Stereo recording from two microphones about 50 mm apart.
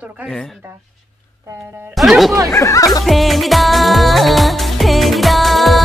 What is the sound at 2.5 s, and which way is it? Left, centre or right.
Speech, left.